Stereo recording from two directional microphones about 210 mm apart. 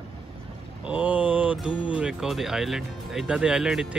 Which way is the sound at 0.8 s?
5° right (ahead or behind).